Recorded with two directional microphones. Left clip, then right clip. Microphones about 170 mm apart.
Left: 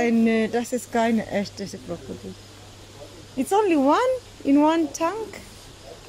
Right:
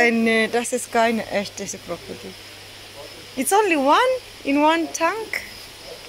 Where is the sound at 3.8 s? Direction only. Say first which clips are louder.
Right 3 dB; 30° left (ahead or behind).